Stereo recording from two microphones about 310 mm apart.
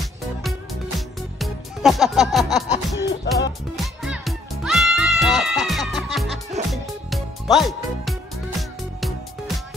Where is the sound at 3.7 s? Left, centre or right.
Centre.